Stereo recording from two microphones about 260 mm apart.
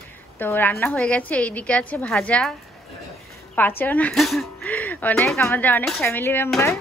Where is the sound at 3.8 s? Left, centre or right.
Centre.